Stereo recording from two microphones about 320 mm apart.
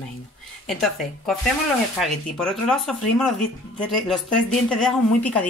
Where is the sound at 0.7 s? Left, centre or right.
Centre.